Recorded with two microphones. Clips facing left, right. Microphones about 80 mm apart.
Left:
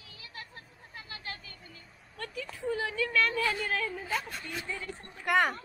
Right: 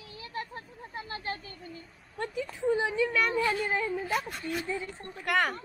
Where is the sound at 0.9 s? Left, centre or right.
Right.